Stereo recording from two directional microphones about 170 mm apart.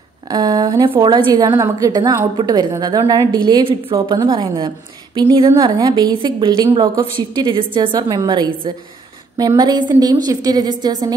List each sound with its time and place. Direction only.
0.3 s a woman's voice: 20° right (ahead or behind)